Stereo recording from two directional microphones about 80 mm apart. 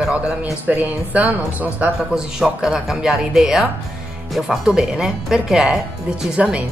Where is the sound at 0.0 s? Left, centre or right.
Centre.